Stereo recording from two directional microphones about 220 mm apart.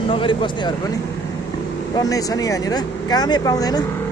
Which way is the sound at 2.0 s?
15° left (ahead or behind).